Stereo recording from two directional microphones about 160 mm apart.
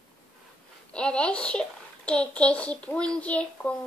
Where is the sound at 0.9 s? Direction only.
5° left (ahead or behind).